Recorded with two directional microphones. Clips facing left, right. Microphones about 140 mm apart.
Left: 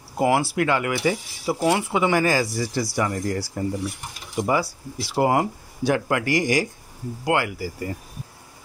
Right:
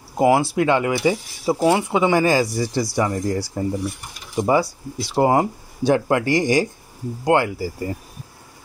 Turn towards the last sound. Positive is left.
turn(degrees=-30)  # may be behind; listen again after turning